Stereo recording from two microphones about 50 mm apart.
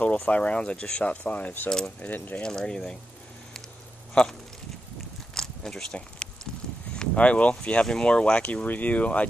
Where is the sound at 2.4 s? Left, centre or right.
Centre.